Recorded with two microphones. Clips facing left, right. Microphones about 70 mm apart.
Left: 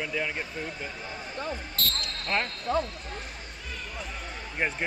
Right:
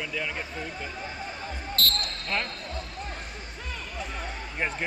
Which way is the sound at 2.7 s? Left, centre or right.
Left.